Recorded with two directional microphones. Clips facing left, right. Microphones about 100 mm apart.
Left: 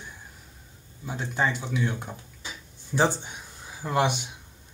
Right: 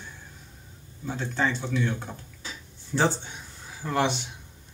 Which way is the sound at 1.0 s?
15° left (ahead or behind).